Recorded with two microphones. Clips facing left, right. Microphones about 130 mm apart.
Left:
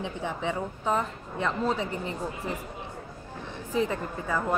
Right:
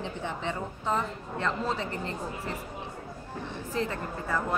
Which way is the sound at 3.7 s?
15° left (ahead or behind).